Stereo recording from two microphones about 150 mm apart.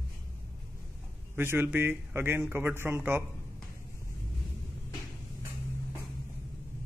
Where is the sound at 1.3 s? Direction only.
15° right (ahead or behind).